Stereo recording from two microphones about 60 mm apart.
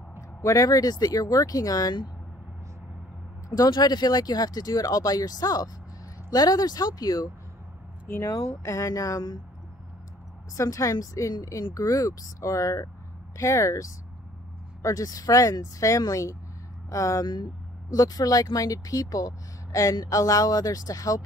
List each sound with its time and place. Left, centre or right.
0.4 s speech: left
4.2 s speech: left
8.3 s speech: left
10.5 s speech: left
13.4 s speech: left
14.8 s speech: left
17.9 s speech: left